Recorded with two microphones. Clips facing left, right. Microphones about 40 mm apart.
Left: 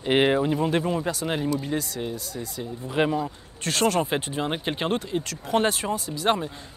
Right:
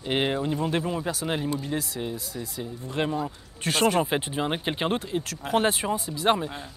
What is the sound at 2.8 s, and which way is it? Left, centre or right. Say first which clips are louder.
Speech: left 4 dB; centre.